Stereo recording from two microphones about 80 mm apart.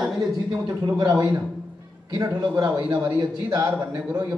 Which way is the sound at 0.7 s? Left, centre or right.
Right.